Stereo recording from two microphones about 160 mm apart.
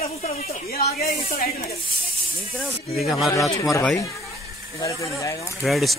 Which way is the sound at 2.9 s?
Centre (ahead or behind).